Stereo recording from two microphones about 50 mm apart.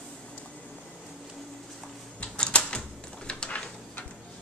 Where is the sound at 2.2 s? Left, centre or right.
Left.